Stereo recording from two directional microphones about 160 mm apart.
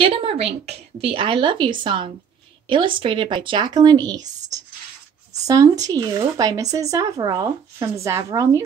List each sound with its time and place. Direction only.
0.0 s a woman's voice: 35° right (ahead or behind); by 8.6 s 20° right (ahead or behind)